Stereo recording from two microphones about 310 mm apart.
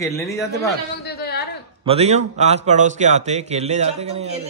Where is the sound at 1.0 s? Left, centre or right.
Left.